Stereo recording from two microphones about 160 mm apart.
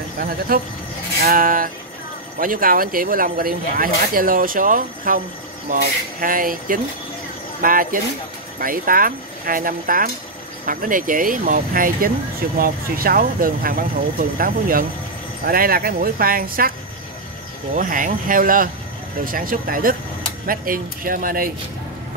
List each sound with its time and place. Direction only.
0.5 s speech: 65° right (ahead or behind)
6.2 s speech: 60° right (ahead or behind)
17.7 s speech: 60° right (ahead or behind)